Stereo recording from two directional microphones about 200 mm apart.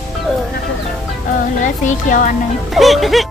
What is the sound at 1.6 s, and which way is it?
Speech, 40° left (ahead or behind).